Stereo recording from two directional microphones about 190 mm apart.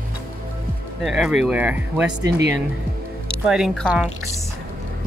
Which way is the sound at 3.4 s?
Centre (ahead or behind).